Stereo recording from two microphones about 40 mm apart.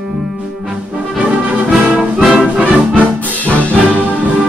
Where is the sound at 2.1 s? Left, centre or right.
Centre.